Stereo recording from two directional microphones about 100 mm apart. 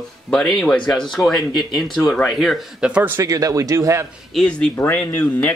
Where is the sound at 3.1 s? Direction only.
35° right (ahead or behind).